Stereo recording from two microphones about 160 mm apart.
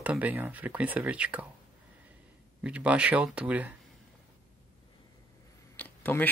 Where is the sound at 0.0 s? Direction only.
10° right (ahead or behind).